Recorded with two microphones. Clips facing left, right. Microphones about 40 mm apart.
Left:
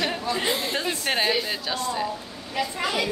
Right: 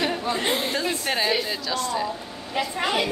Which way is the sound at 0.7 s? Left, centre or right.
Centre.